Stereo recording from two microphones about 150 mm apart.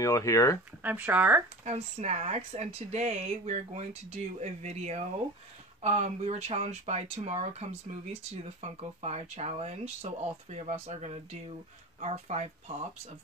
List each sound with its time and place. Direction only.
0.0 s speech: 20° left (ahead or behind)
0.8 s speech: 10° right (ahead or behind)
1.6 s speech: 50° right (ahead or behind)